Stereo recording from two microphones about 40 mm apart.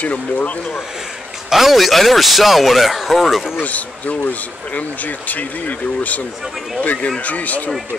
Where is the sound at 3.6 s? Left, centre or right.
Left.